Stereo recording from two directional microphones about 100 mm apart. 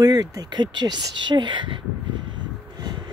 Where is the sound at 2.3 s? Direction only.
45° right (ahead or behind).